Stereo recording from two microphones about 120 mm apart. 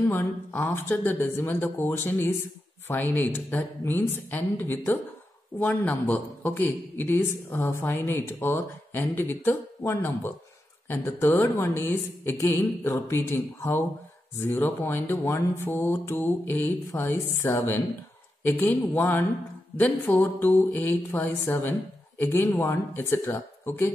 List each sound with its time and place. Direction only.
0.1 s a man's voice: 15° left (ahead or behind)